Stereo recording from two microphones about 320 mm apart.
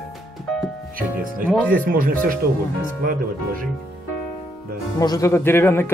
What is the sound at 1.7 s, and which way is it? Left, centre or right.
Speech, right.